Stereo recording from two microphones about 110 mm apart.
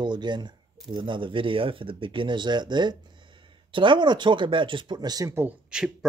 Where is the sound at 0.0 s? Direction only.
45° right (ahead or behind).